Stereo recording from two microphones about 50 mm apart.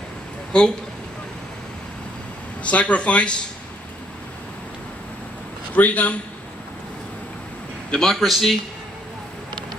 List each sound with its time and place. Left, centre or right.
0.5 s speech: centre
2.6 s speech: left
5.8 s a man's voice: left
7.9 s a man's voice: centre